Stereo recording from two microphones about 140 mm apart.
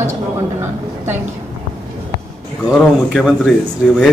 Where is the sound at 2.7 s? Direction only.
Centre (ahead or behind).